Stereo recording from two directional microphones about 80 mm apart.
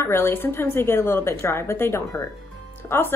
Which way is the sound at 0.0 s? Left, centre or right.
Left.